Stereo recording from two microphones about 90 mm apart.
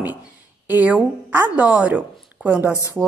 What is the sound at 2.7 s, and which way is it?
Speech, 35° left (ahead or behind).